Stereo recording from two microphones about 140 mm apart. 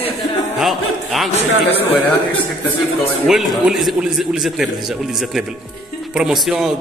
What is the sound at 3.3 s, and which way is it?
A man's voice, centre (ahead or behind).